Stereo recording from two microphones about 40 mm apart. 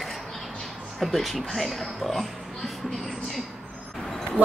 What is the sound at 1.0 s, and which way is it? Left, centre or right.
Speech, centre.